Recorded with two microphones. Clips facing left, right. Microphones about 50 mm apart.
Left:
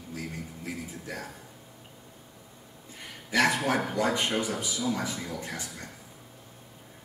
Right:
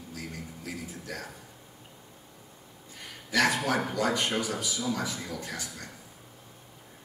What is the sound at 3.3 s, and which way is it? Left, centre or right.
Speech, left.